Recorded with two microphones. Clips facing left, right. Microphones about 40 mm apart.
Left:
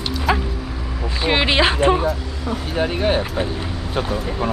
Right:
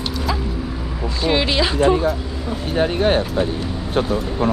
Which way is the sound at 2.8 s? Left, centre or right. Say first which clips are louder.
Right 3 dB; right.